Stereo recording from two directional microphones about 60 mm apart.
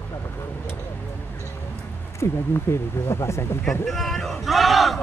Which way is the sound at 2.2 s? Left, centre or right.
Left.